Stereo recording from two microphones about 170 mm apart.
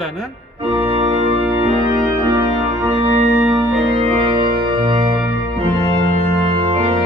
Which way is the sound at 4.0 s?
30° right (ahead or behind).